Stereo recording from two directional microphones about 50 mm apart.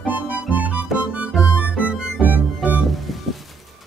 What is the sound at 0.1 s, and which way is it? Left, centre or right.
Music, right.